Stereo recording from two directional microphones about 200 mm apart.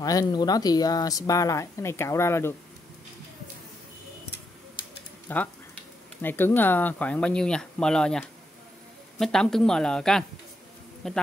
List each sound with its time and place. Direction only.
0.0 s speech: 20° left (ahead or behind)
5.3 s speech: 10° left (ahead or behind)